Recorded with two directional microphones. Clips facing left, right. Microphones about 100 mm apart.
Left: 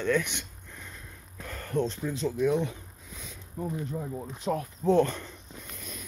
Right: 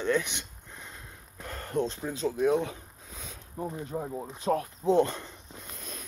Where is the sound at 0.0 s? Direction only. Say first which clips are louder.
Left 1 dB; 25° right (ahead or behind).